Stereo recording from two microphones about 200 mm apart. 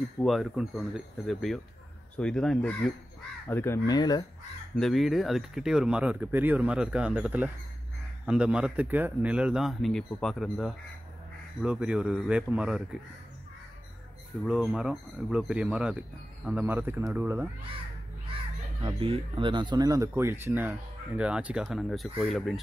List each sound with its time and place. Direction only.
0.2 s speech: centre (ahead or behind); by 4.3 s 20° left (ahead or behind)
4.7 s speech: centre (ahead or behind)
14.4 s speech: 5° right (ahead or behind)
18.8 s speech: 25° right (ahead or behind); by 22.6 s centre (ahead or behind)